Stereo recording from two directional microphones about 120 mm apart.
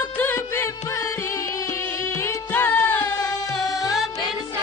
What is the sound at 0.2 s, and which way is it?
Music, 20° left (ahead or behind).